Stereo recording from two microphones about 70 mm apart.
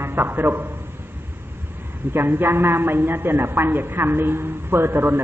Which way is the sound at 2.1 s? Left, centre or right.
Right.